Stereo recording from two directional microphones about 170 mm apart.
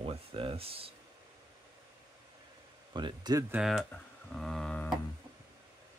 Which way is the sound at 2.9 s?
25° right (ahead or behind).